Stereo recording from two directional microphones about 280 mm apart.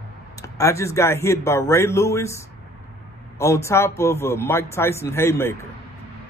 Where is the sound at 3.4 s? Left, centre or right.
Centre.